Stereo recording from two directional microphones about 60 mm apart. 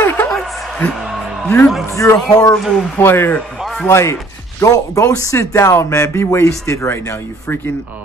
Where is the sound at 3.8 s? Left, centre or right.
Left.